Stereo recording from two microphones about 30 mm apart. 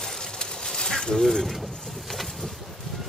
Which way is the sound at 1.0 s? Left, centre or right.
Left.